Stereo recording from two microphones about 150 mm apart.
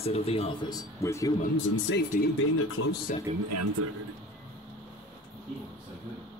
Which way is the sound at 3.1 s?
60° left (ahead or behind).